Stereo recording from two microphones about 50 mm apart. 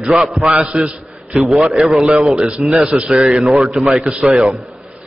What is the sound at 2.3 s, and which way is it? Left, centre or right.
A man's voice, centre.